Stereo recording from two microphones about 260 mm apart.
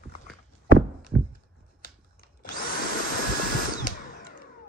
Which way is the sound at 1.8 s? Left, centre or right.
Left.